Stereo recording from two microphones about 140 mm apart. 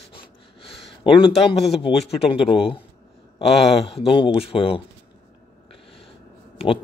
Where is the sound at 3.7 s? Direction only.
40° left (ahead or behind).